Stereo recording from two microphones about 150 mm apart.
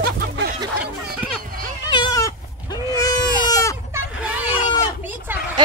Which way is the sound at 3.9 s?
10° right (ahead or behind).